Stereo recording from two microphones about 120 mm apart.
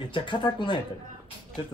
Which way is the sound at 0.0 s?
40° left (ahead or behind).